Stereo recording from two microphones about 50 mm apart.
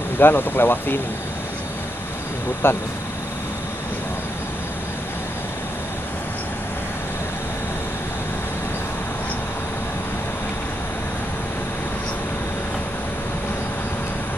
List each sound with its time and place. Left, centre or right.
0.2 s speech: left
2.6 s speech: left